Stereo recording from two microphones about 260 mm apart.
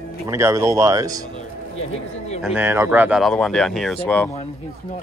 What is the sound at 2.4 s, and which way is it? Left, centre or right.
Speech, centre.